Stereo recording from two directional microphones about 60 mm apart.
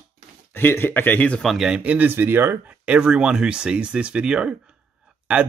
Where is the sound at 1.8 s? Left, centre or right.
Right.